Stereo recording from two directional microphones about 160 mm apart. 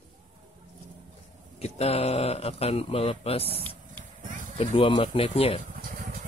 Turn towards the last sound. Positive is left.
turn(degrees=35)  # may be behind; listen again after turning